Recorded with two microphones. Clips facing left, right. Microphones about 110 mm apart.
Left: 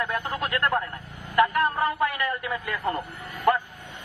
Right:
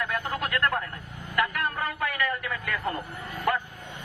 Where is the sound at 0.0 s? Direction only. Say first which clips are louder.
Left 2 dB; 20° left (ahead or behind).